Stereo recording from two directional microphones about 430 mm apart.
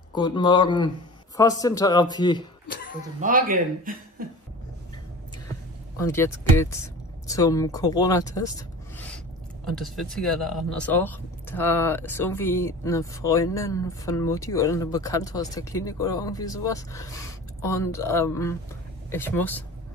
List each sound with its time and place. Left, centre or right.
0.1 s speech: centre
2.7 s a sound: centre
3.2 s speech: centre
5.9 s speech: centre